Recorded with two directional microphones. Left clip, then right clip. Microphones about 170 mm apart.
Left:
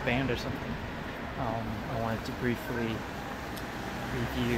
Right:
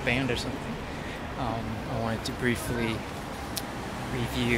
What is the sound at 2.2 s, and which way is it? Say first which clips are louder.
Speech: right 4 dB; 5° right (ahead or behind).